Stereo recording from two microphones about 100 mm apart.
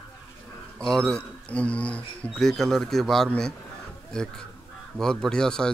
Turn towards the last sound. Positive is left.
turn(degrees=5)  # may be behind; listen again after turning